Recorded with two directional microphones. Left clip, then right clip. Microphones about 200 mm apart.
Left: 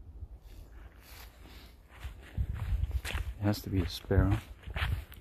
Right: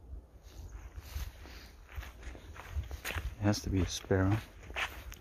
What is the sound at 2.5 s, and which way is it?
Walk, 5° right (ahead or behind).